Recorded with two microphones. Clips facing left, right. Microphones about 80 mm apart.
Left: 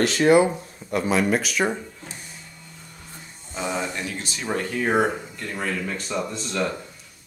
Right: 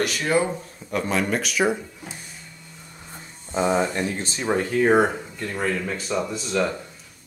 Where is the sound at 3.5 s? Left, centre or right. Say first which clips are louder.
Right 6 dB; right.